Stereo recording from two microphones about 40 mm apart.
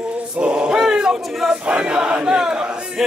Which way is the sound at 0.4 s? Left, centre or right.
Right.